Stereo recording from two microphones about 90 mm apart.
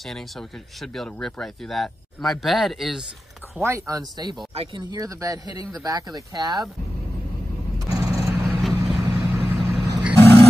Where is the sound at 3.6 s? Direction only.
35° right (ahead or behind).